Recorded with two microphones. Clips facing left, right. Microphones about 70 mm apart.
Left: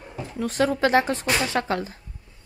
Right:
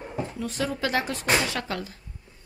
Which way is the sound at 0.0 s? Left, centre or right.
Right.